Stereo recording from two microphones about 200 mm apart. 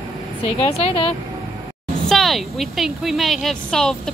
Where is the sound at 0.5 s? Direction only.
30° left (ahead or behind).